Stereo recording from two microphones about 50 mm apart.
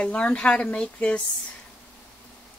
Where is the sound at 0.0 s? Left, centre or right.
Left.